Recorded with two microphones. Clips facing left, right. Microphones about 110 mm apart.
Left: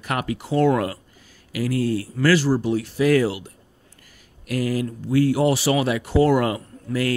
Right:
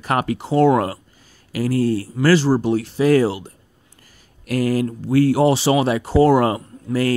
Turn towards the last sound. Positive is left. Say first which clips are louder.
# right 4 dB
turn(degrees=-30)  # may be behind; listen again after turning